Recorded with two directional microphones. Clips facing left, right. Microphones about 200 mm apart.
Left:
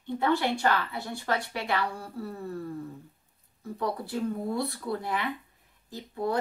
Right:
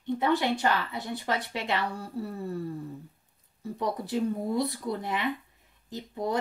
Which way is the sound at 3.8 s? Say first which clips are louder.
Right 2 dB; 20° right (ahead or behind).